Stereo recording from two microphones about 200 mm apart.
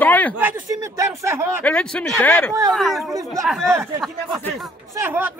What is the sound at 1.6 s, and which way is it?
Speech, 5° left (ahead or behind).